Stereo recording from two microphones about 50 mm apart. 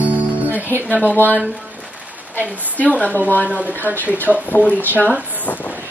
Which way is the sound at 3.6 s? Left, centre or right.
Right.